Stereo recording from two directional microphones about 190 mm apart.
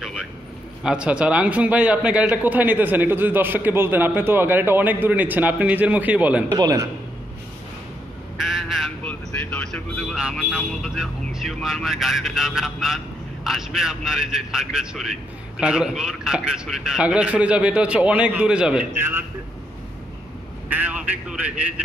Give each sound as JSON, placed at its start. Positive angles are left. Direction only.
{"t": 0.0, "sound": "a sound", "side_deg": 0}
{"t": 0.8, "sound": "a man's voice", "side_deg": -5}
{"t": 6.5, "sound": "a man's voice", "side_deg": -20}
{"t": 8.4, "sound": "a man's voice", "side_deg": 0}
{"t": 20.7, "sound": "a man's voice", "side_deg": -5}